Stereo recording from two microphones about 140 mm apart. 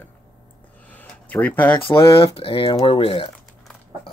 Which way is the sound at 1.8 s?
40° left (ahead or behind).